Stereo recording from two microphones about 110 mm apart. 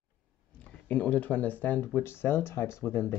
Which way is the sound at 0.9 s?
10° left (ahead or behind).